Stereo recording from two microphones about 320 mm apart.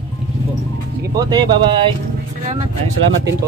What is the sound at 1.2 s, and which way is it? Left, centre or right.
Speech, centre.